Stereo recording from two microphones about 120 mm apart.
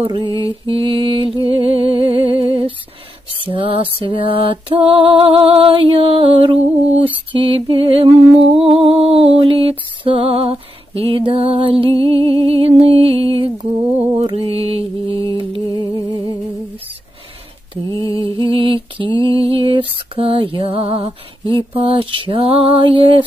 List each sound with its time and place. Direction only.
0.0 s music: 45° right (ahead or behind)
14.1 s mantra: 45° right (ahead or behind)
17.8 s mantra: 25° left (ahead or behind)
18.2 s a sound: 50° right (ahead or behind)
21.5 s music: 50° right (ahead or behind)